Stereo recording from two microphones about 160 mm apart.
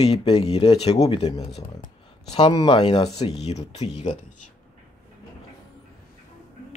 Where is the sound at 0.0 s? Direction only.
40° left (ahead or behind).